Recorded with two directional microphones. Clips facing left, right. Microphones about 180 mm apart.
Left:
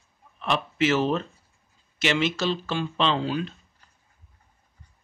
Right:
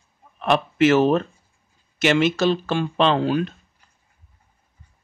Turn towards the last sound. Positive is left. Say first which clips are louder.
# right 6 dB
turn(degrees=-55)  # may be behind; listen again after turning